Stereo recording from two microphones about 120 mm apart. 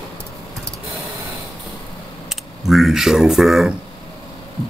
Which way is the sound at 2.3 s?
Centre (ahead or behind).